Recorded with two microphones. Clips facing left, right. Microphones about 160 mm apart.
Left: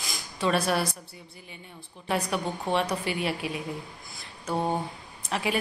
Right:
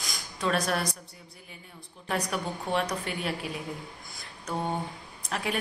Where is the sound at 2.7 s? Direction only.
5° left (ahead or behind).